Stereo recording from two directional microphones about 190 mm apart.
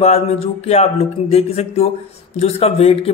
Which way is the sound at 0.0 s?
35° left (ahead or behind).